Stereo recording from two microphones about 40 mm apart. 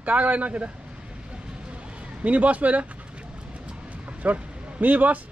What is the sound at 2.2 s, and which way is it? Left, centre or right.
Speech, right.